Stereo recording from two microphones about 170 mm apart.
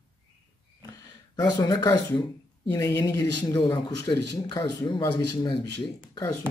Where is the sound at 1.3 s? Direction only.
25° left (ahead or behind).